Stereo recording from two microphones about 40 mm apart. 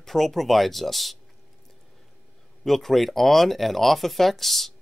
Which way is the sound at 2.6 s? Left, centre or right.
Centre.